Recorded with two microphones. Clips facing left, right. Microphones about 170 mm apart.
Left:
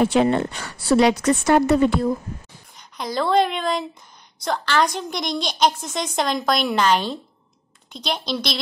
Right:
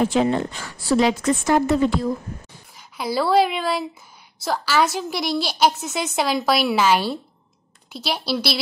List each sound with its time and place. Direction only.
0.0 s a woman's voice: 65° left (ahead or behind)
3.0 s a woman's voice: 5° right (ahead or behind)